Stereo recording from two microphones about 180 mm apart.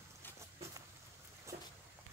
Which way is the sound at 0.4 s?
15° right (ahead or behind).